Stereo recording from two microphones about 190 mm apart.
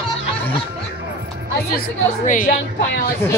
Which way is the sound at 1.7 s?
45° left (ahead or behind).